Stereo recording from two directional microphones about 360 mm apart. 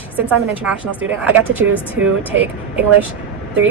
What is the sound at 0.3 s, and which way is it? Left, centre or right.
Speech, centre.